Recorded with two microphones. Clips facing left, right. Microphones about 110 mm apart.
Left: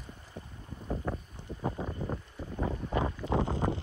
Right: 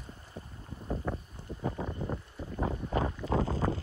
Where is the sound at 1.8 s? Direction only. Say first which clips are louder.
Even; centre (ahead or behind).